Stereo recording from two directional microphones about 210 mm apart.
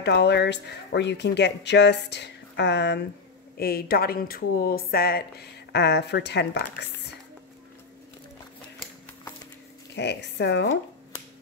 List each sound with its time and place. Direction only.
0.0 s speech: 55° left (ahead or behind)
9.9 s speech: 55° left (ahead or behind)